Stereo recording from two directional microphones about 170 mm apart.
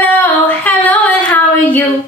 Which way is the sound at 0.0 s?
10° left (ahead or behind).